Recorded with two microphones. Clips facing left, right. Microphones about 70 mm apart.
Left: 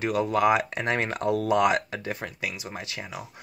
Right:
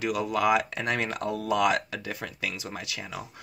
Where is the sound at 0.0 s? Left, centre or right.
Left.